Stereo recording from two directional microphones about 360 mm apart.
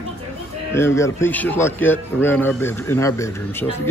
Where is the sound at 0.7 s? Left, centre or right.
Centre.